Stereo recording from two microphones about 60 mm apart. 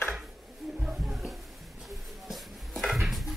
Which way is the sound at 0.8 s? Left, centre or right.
Centre.